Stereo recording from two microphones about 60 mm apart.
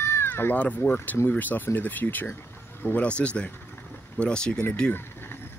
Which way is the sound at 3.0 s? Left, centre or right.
Centre.